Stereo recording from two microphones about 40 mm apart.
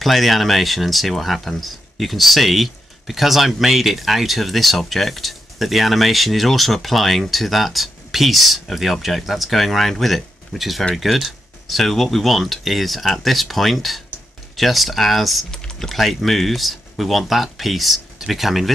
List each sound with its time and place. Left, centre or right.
0.0 s speech: centre
15.5 s typing: centre
15.9 s speech: centre